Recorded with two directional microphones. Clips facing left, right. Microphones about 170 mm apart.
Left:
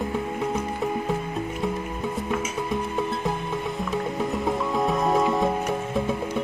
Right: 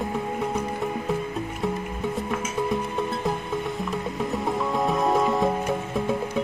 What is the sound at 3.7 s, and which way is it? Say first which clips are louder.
Music: left 2 dB; centre (ahead or behind).